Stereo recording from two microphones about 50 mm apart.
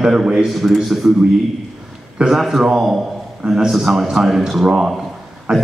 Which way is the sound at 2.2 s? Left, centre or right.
Centre.